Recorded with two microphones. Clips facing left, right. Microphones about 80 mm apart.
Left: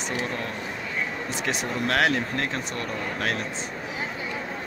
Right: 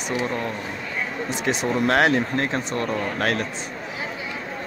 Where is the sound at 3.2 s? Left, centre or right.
Right.